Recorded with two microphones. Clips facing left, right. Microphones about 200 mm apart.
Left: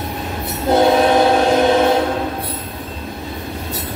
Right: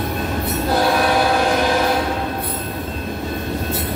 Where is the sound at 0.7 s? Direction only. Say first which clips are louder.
Left 6 dB; 25° left (ahead or behind).